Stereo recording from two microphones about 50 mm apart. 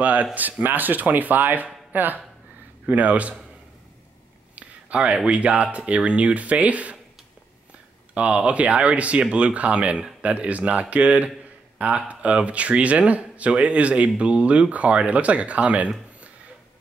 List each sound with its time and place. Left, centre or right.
0.0 s speech: right
4.9 s speech: centre
8.1 s speech: right